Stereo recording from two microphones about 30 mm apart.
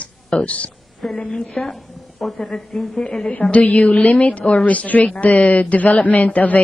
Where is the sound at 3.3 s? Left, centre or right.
Left.